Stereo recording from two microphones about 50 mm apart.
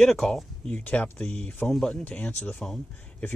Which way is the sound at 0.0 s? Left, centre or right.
Centre.